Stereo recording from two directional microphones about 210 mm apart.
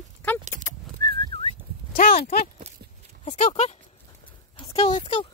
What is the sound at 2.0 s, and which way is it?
Speech, 35° left (ahead or behind).